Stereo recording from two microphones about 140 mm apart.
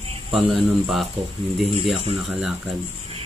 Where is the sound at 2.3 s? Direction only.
5° right (ahead or behind).